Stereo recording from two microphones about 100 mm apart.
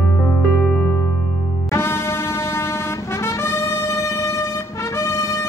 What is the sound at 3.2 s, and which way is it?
Brass instrument, 30° left (ahead or behind).